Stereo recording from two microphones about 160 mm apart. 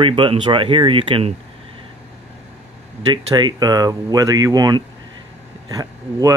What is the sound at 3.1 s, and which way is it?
Speech, 30° right (ahead or behind).